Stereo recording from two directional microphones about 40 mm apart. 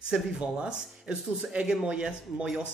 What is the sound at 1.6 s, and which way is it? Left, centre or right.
Speech, centre.